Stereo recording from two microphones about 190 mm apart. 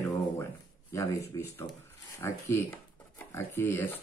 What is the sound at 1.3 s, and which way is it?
Speech, 15° left (ahead or behind).